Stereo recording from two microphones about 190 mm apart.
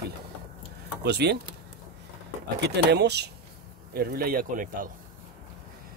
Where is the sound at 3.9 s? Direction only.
50° right (ahead or behind).